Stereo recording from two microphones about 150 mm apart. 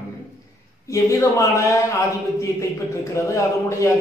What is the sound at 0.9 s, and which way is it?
Speech, 20° left (ahead or behind).